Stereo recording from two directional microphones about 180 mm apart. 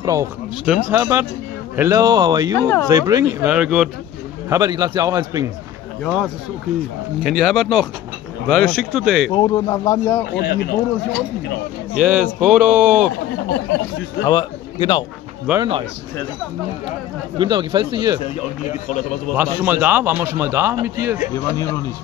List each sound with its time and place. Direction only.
0.0 s a man's voice: 15° right (ahead or behind)
2.6 s speech: 10° left (ahead or behind)
2.9 s a man's voice: 20° right (ahead or behind)
3.4 s speech: 5° right (ahead or behind)
4.5 s a man's voice: 20° right (ahead or behind)
6.0 s speech: centre (ahead or behind)
9.3 s speech: 20° left (ahead or behind)
10.3 s speech: 65° left (ahead or behind)
11.9 s a man's voice: 5° right (ahead or behind)
14.2 s a man's voice: 25° left (ahead or behind)
15.5 s a man's voice: 5° right (ahead or behind)
17.4 s a man's voice: 25° right (ahead or behind)
19.3 s a man's voice: 10° right (ahead or behind)
21.3 s speech: 15° left (ahead or behind)